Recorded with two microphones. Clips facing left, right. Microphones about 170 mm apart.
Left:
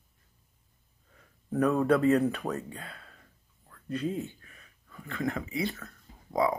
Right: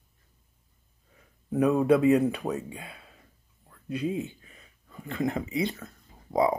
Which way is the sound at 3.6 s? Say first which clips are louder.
Right 1 dB; 15° right (ahead or behind).